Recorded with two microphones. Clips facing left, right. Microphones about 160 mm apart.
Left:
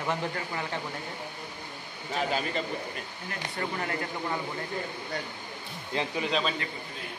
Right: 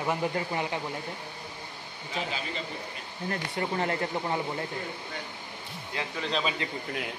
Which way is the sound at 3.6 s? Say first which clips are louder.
Right 3 dB; 25° right (ahead or behind).